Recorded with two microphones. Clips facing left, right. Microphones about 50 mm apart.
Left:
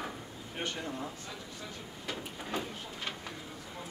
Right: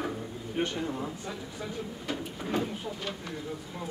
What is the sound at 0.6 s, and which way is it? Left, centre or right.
Speech, centre.